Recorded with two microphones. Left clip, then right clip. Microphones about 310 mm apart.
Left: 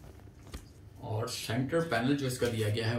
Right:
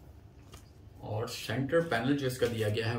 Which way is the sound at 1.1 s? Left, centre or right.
Centre.